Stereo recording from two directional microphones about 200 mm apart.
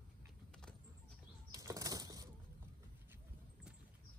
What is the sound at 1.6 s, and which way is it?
Bird flight, 15° right (ahead or behind).